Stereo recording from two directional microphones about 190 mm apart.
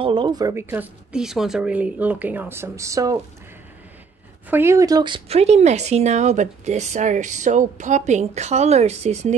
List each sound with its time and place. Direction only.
0.0 s speech: 25° right (ahead or behind)
4.5 s a woman's voice: 10° right (ahead or behind); by 9.3 s 35° right (ahead or behind)